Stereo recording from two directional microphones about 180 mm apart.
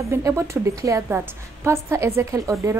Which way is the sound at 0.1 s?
15° right (ahead or behind).